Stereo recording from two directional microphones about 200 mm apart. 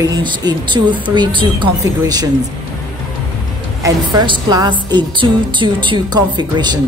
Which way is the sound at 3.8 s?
20° right (ahead or behind).